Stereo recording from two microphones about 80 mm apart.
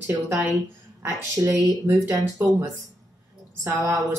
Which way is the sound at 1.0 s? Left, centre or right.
Right.